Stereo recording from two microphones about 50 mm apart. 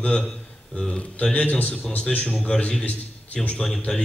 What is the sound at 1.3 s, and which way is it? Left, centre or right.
A man's voice, left.